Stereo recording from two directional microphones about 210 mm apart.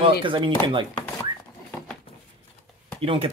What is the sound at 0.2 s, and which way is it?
Speech, 25° right (ahead or behind).